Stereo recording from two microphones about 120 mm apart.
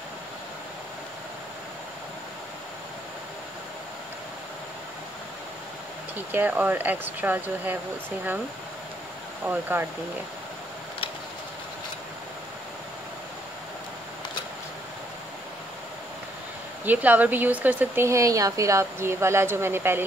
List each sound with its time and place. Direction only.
6.1 s speech: 15° right (ahead or behind)
9.4 s speech: 15° right (ahead or behind)
16.8 s speech: 15° right (ahead or behind)